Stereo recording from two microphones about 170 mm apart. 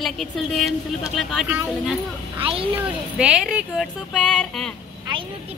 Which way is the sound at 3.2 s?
5° right (ahead or behind).